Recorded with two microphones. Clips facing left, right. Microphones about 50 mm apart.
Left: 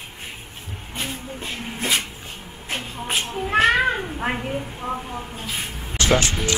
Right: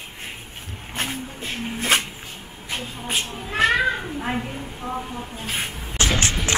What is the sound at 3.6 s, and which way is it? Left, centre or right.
Cat, left.